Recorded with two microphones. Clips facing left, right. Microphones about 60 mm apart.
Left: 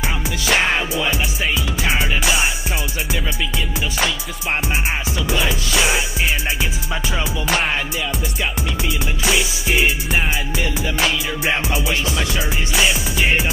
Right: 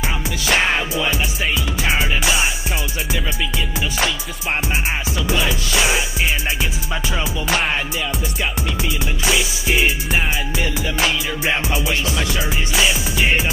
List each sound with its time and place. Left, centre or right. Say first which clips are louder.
0.5 s music: even; centre
1.8 s music: right 1 dB; centre
5.3 s music: even; centre
11.7 s music: even; centre